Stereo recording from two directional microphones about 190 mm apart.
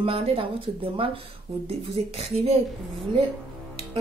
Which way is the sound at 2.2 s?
35° right (ahead or behind).